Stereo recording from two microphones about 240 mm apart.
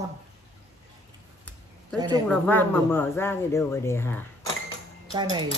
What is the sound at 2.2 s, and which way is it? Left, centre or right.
Speech, centre.